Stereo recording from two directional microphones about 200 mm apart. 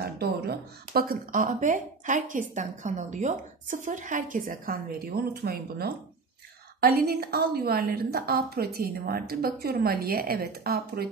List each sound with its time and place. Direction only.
0.0 s a woman's voice: 50° right (ahead or behind)